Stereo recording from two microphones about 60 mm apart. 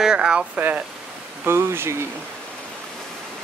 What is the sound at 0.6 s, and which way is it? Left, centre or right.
Speech, right.